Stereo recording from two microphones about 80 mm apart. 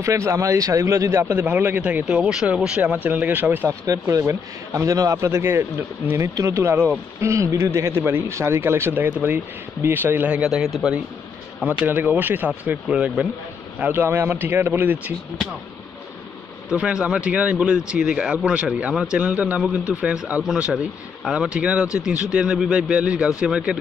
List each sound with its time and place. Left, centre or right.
0.0 s speech: right
1.3 s speech: right
3.8 s speech: right
10.3 s a man's voice: centre
11.6 s speech: right
12.8 s speech: centre
13.7 s a man's voice: right
14.0 s speech: right
16.6 s speech: centre